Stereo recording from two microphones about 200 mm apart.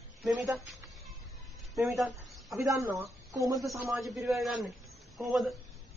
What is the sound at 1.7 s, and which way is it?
Speech, centre (ahead or behind).